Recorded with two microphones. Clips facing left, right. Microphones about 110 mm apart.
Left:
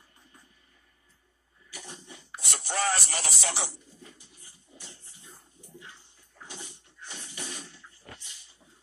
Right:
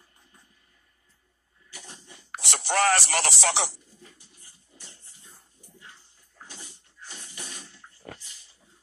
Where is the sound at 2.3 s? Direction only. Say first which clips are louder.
Right 6 dB; 80° right.